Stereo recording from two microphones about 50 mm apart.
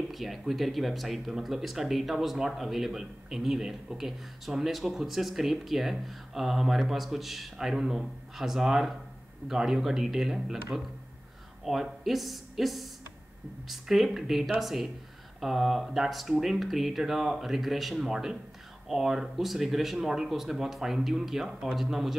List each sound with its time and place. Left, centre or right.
0.1 s a man's voice: centre